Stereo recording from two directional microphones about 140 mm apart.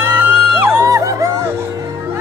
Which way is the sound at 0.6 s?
20° right (ahead or behind).